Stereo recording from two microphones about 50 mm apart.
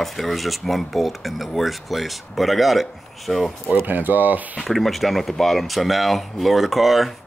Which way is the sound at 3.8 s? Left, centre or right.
Right.